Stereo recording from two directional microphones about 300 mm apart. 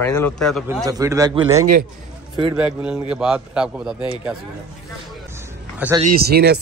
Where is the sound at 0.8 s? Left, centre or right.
Centre.